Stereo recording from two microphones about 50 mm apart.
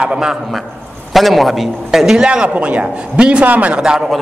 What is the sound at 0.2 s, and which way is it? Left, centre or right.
A man's voice, centre.